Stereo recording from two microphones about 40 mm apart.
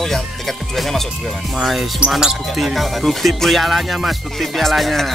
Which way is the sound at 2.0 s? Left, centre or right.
Right.